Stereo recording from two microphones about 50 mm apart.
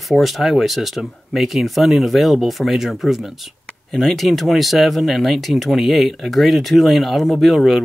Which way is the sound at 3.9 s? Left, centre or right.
Centre.